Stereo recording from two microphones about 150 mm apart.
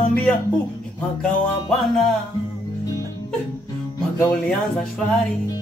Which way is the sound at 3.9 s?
5° left (ahead or behind).